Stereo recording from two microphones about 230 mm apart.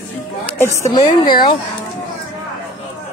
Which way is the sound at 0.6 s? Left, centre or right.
Centre.